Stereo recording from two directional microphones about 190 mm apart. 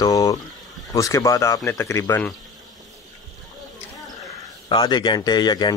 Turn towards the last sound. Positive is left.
turn(degrees=20)  # may be behind; listen again after turning